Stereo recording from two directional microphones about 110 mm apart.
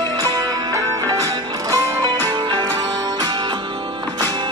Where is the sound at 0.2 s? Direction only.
30° right (ahead or behind).